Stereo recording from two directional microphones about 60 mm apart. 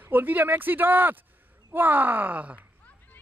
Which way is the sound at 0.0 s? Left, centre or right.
Right.